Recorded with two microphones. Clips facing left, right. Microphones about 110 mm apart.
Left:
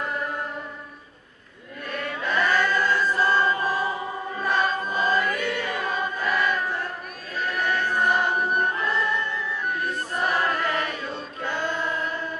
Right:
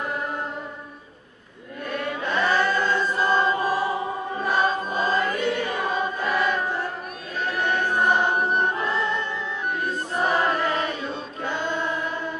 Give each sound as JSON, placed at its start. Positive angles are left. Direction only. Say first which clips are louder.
{"t": 2.3, "sound": "chant", "louder": "even", "side_deg": -20}
{"t": 4.5, "sound": "choir", "louder": "right 1 dB", "side_deg": -20}
{"t": 10.3, "sound": "choir", "louder": "right 2 dB", "side_deg": -20}